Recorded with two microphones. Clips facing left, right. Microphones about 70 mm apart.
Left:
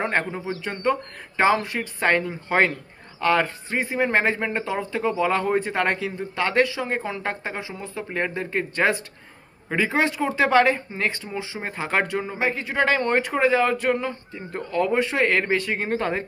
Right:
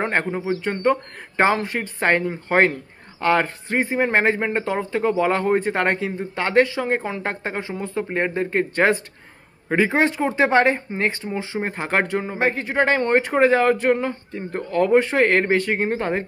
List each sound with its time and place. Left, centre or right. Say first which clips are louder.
0.0 s speech: right 2 dB; right
0.6 s speech: right 2 dB; right
3.9 s speech: right 2 dB; right
15.9 s speech: right 1 dB; right